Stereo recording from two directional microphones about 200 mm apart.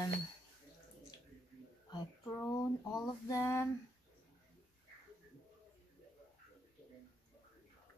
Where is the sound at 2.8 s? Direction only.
20° left (ahead or behind).